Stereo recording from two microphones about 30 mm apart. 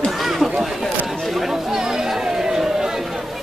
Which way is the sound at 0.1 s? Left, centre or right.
Centre.